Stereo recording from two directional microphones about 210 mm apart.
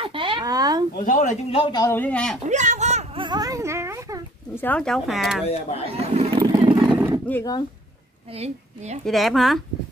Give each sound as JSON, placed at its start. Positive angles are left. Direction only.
{"t": 0.0, "sound": "a sound", "side_deg": -25}
{"t": 0.9, "sound": "speech", "side_deg": 40}
{"t": 2.4, "sound": "speech", "side_deg": -35}
{"t": 3.3, "sound": "speech", "side_deg": -15}
{"t": 4.6, "sound": "speech", "side_deg": 5}
{"t": 5.5, "sound": "speech", "side_deg": 30}
{"t": 5.9, "sound": "vehicle", "side_deg": -30}
{"t": 7.2, "sound": "speech", "side_deg": 15}
{"t": 8.4, "sound": "a woman's voice", "side_deg": -30}
{"t": 9.0, "sound": "speech", "side_deg": 0}